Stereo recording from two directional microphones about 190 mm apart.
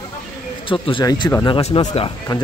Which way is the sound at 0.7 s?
25° left (ahead or behind).